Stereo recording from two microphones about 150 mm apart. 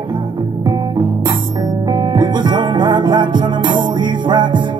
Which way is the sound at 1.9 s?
30° right (ahead or behind).